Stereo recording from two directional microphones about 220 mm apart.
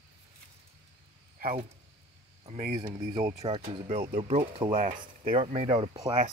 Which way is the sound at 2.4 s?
25° right (ahead or behind).